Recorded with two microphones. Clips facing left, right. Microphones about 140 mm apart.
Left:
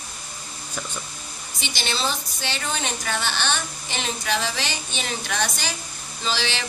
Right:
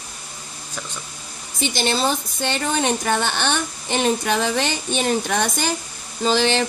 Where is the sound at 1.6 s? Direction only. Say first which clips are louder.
Right 7 dB; 50° right (ahead or behind).